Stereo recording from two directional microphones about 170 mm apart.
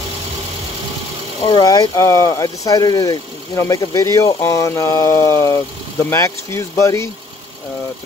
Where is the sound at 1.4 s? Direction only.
25° left (ahead or behind).